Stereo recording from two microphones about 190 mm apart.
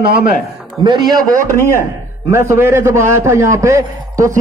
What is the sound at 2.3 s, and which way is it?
A man's voice, 15° right (ahead or behind).